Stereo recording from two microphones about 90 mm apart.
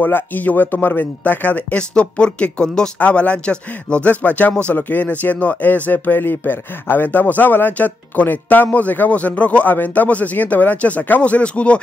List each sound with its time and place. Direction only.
0.0 s speech: 20° left (ahead or behind)